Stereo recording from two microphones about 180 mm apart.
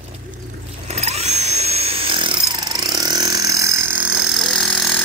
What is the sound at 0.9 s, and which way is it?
Tools, 35° right (ahead or behind).